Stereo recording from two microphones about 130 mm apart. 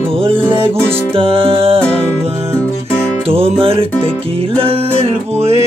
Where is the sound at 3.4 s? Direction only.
45° right (ahead or behind).